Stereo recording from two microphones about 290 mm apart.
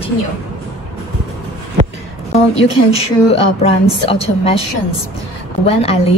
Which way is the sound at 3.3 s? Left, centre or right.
Centre.